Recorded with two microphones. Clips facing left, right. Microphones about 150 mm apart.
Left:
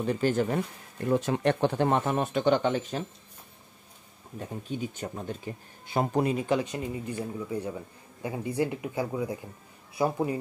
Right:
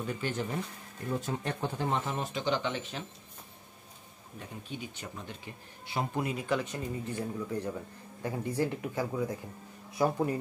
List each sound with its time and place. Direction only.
0.1 s speech: 40° left (ahead or behind)
1.0 s speech: 85° left; by 3.0 s 45° left (ahead or behind)
4.4 s speech: 45° left (ahead or behind)
6.5 s a man's voice: 15° left (ahead or behind)